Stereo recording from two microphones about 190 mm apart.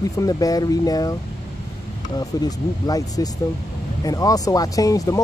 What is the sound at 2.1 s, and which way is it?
Speech, 20° left (ahead or behind).